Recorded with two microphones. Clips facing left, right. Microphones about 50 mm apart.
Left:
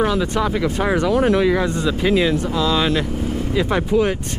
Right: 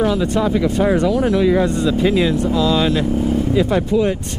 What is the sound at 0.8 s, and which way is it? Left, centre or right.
Speech, left.